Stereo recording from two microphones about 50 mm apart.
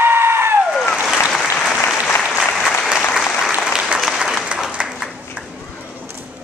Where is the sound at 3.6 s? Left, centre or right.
Centre.